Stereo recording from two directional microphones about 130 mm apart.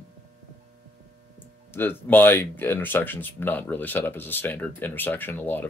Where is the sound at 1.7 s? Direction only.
15° left (ahead or behind).